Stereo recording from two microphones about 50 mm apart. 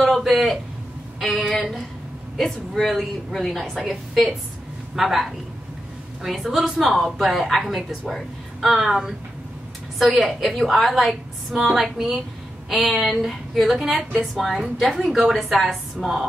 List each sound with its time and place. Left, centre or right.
0.0 s a man's voice: centre
8.7 s a woman's voice: centre